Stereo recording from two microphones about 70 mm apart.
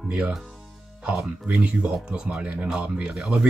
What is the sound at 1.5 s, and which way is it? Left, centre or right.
Speech, right.